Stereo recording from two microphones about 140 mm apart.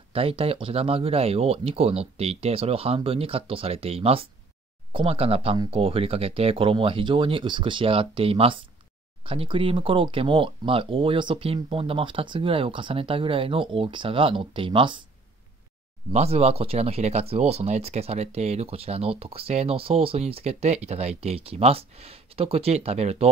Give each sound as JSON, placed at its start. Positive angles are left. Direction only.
{"t": 0.1, "sound": "speech", "side_deg": -40}
{"t": 16.1, "sound": "speech", "side_deg": -50}